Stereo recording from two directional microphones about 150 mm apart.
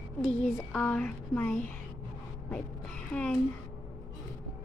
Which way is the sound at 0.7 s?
5° left (ahead or behind).